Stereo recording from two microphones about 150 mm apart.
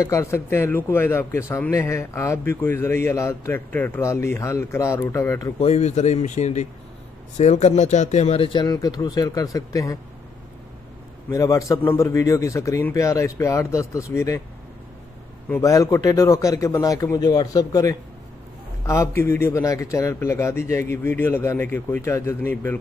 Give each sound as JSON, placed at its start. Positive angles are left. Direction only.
{"t": 0.0, "sound": "a man's voice", "side_deg": 20}
{"t": 5.6, "sound": "speech", "side_deg": 45}
{"t": 11.2, "sound": "speech", "side_deg": 20}
{"t": 15.5, "sound": "a man's voice", "side_deg": 20}